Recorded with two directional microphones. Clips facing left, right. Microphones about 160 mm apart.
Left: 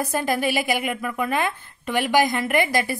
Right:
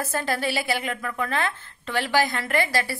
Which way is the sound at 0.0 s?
15° left (ahead or behind).